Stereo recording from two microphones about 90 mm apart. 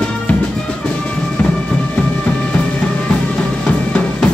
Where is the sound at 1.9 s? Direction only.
15° left (ahead or behind).